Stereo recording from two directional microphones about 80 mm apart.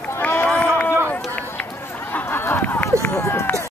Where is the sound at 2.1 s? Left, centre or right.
Left.